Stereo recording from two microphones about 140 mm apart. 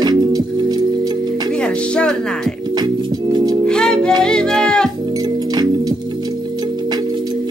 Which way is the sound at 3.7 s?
5° left (ahead or behind).